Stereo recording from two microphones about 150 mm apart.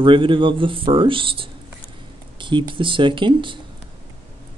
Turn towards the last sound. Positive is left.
turn(degrees=-35)  # may be behind; listen again after turning